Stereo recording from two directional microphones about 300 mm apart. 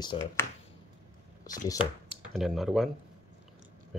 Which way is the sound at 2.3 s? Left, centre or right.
Centre.